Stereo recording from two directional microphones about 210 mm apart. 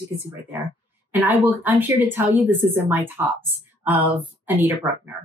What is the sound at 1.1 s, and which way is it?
Speech, 10° right (ahead or behind).